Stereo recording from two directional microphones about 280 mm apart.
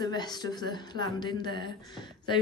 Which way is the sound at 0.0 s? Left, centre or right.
Centre.